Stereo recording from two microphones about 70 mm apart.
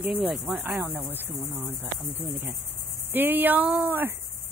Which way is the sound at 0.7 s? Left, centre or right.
Right.